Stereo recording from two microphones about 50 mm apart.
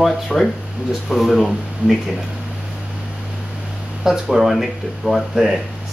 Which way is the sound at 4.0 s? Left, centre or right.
Centre.